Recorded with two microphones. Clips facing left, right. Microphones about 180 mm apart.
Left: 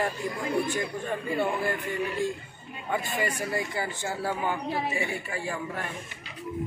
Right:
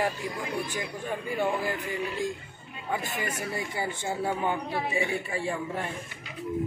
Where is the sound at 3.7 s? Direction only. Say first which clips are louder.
Right 1 dB; 15° right (ahead or behind).